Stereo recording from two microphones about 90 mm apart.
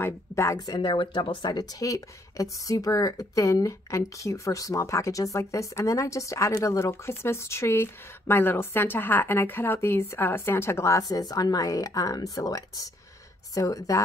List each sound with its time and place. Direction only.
0.0 s speech: 30° left (ahead or behind)
0.6 s speech: 55° left (ahead or behind); by 14.0 s 40° left (ahead or behind)